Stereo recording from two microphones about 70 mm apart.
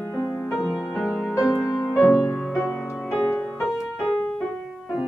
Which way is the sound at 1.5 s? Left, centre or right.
Left.